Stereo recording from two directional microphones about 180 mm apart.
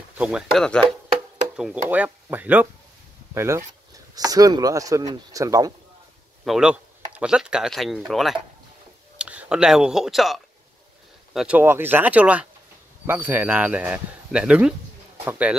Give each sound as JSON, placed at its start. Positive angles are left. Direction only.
{"t": 0.2, "sound": "speech", "side_deg": -5}
{"t": 1.9, "sound": "speech", "side_deg": -10}
{"t": 6.4, "sound": "speech", "side_deg": -5}